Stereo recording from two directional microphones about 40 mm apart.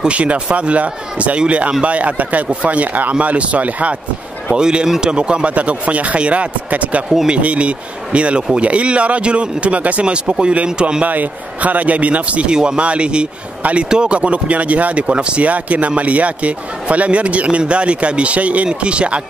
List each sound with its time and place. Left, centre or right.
0.1 s a man's voice: right
4.6 s speech: centre
5.1 s a man's voice: right
11.1 s a man's voice: right
12.4 s speech: right
13.8 s a man's voice: right
15.4 s a man's voice: right